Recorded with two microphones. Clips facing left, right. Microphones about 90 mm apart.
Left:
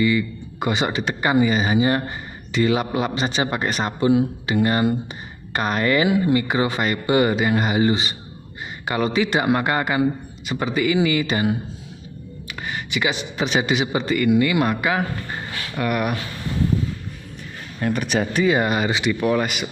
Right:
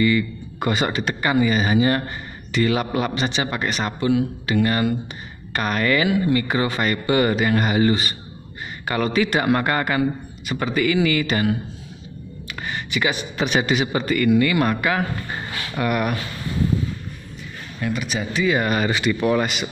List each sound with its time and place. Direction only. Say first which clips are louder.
0.0 s a man's voice: right 1 dB; 15° left (ahead or behind)
1.2 s speech: left 1 dB; 25° left (ahead or behind)
3.2 s speech: left 1 dB; 35° left (ahead or behind)
12.4 s music: even; 5° left (ahead or behind)
12.9 s a man's voice: even; 20° left (ahead or behind)
15.3 s speech: right 1 dB; 5° right (ahead or behind)
17.7 s speech: left 4 dB; 45° left (ahead or behind)
18.4 s speech: even; 25° left (ahead or behind)
19.2 s speech: right 1 dB; centre (ahead or behind)